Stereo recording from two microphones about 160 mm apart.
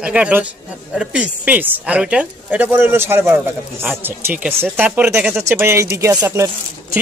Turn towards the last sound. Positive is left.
turn(degrees=-20)  # may be behind; listen again after turning